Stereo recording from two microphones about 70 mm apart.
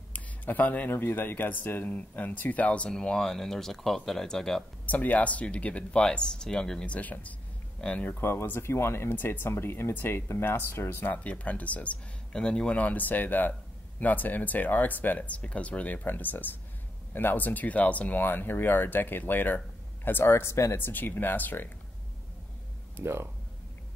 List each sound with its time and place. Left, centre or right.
0.1 s speech: left
4.8 s speech: left
8.0 s speech: left
11.2 s speech: centre; by 20.7 s left
20.7 s speech: left
22.9 s speech: right